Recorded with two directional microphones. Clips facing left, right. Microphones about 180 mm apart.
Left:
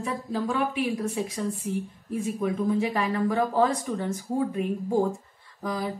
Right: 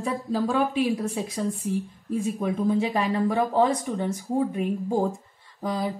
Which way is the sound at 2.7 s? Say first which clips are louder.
Right 2 dB; 25° right (ahead or behind).